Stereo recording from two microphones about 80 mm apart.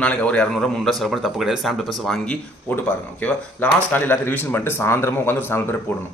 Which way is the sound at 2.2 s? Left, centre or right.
Centre.